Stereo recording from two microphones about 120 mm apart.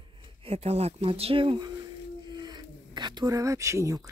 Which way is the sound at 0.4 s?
55° right (ahead or behind).